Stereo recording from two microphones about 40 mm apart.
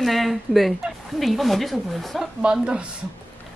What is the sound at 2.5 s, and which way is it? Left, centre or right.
Speech, right.